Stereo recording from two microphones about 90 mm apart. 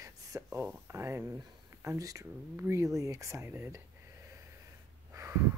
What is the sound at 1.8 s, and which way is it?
Speech, 35° right (ahead or behind).